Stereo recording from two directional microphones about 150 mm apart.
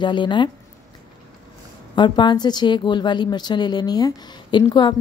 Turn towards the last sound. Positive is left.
turn(degrees=30)  # may be behind; listen again after turning